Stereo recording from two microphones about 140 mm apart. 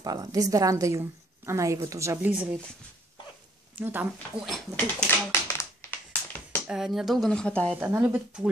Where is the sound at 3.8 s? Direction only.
15° right (ahead or behind).